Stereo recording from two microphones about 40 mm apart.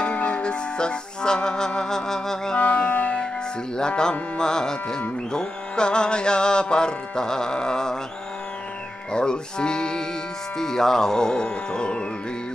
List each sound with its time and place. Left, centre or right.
0.0 s music: left
2.6 s music: left
3.7 s livestock: centre
5.3 s music: centre
9.1 s music: left
10.6 s speech: centre